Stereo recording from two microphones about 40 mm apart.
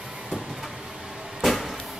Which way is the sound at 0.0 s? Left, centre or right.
Centre.